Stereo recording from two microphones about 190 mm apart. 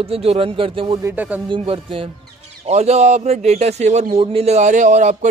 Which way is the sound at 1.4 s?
30° right (ahead or behind).